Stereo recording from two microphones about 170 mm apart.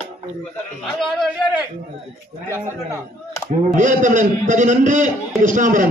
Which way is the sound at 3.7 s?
45° right (ahead or behind).